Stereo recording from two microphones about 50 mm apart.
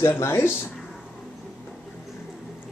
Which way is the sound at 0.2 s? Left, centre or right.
Left.